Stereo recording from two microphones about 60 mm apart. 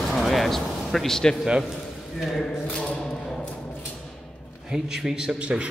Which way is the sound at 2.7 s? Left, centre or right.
Centre.